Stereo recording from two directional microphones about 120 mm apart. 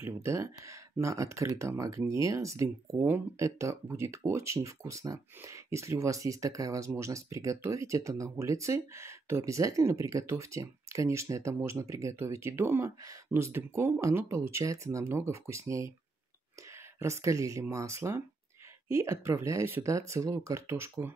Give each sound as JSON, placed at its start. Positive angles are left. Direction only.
{"t": 0.0, "sound": "speech", "side_deg": -25}
{"t": 17.0, "sound": "speech", "side_deg": -25}